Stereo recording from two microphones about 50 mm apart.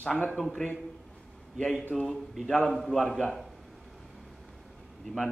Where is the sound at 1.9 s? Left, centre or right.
Centre.